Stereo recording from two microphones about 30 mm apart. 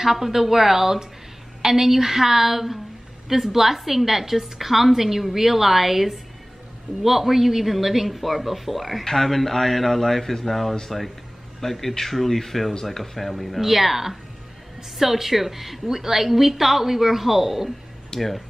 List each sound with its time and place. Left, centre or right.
0.0 s a woman's voice: centre
18.1 s speech: left